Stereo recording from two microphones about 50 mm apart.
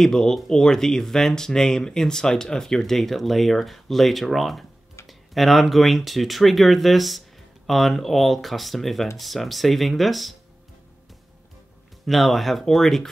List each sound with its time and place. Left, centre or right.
0.0 s speech: centre
12.1 s speech: centre